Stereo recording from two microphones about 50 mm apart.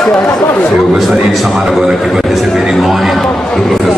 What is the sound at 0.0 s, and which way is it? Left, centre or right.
Speech, centre.